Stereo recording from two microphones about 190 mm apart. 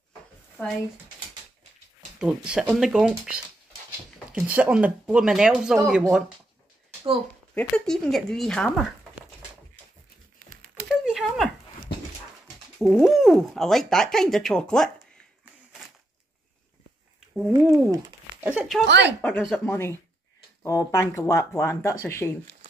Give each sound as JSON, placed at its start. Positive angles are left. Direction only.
{"t": 0.6, "sound": "speech", "side_deg": 10}
{"t": 2.1, "sound": "speech", "side_deg": -5}
{"t": 4.4, "sound": "speech", "side_deg": -10}
{"t": 7.5, "sound": "speech", "side_deg": 5}
{"t": 10.9, "sound": "a sound", "side_deg": -5}
{"t": 12.7, "sound": "speech", "side_deg": 0}
{"t": 17.5, "sound": "speech", "side_deg": -20}
{"t": 18.5, "sound": "speech", "side_deg": 0}
{"t": 18.9, "sound": "speech", "side_deg": -65}
{"t": 19.2, "sound": "speech", "side_deg": 5}